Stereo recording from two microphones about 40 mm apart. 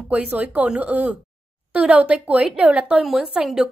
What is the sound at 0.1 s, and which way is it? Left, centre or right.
A woman's voice, right.